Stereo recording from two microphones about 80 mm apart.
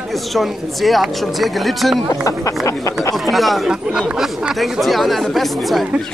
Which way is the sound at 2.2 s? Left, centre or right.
Left.